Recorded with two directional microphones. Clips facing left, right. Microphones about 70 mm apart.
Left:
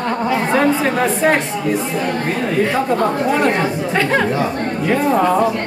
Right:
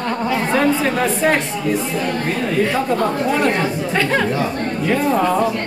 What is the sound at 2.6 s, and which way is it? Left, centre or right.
Speech, left.